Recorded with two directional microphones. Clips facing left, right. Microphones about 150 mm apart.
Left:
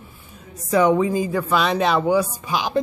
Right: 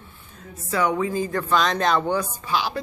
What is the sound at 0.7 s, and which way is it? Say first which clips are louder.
A woman's voice: left 6 dB; 20° left (ahead or behind).